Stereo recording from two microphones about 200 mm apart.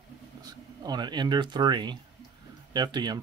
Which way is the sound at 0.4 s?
20° right (ahead or behind).